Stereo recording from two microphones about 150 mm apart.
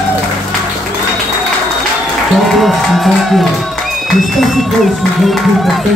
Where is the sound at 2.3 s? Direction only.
Centre (ahead or behind).